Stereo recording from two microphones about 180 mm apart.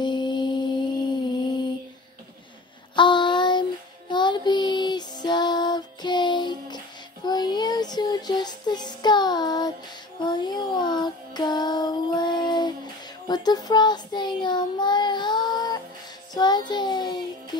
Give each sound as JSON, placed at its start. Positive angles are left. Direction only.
{"t": 0.0, "sound": "mantra", "side_deg": 25}
{"t": 3.0, "sound": "a sound", "side_deg": 25}
{"t": 4.1, "sound": "child singing", "side_deg": 25}